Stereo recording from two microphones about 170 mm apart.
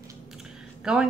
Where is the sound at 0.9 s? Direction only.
5° right (ahead or behind).